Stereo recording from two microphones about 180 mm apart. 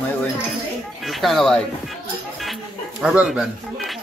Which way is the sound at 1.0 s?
Centre (ahead or behind).